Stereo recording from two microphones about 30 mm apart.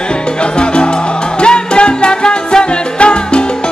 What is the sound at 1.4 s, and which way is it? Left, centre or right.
Music, left.